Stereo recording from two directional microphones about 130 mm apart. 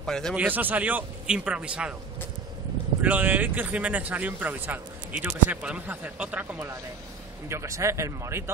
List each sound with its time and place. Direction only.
0.0 s speech: 5° left (ahead or behind)
0.4 s speech: 15° right (ahead or behind)
3.0 s speech: 10° right (ahead or behind)
7.4 s speech: 20° right (ahead or behind)